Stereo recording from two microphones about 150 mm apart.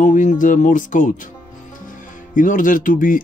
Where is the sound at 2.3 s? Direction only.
65° left (ahead or behind).